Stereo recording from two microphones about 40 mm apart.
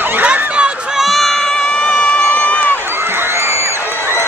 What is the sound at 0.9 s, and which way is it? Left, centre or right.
Crowd, centre.